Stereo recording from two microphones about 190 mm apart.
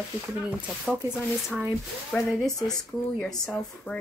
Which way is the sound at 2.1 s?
Centre (ahead or behind).